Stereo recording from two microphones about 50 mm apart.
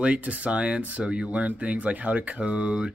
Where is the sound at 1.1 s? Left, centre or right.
Right.